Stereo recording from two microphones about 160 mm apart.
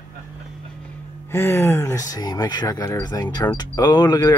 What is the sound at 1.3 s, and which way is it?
Speech, 15° left (ahead or behind).